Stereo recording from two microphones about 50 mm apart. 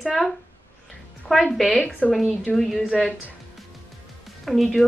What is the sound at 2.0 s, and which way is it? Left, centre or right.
Speech, left.